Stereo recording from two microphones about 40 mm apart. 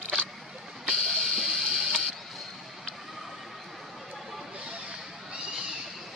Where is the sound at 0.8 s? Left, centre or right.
Centre.